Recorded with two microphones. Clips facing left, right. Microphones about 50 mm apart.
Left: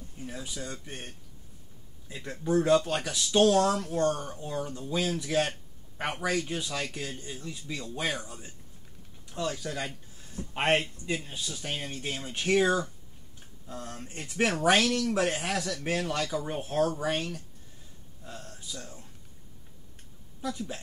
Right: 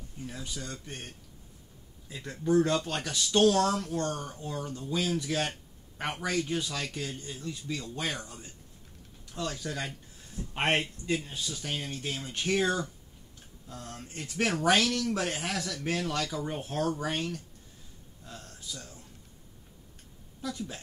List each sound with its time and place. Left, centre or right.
0.2 s speech: centre
18.2 s a sound: centre
18.8 s speech: left
20.4 s speech: centre